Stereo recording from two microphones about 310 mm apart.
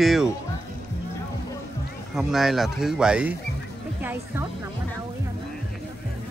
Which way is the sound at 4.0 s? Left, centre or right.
Centre.